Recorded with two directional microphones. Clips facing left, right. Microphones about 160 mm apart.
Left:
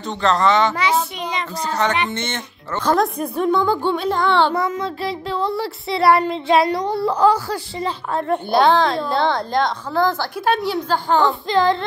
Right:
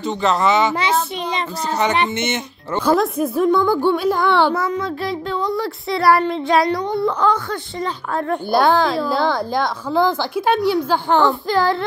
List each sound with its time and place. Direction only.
0.0 s speech: 5° right (ahead or behind)
7.1 s speech: 35° left (ahead or behind)
8.1 s speech: centre (ahead or behind)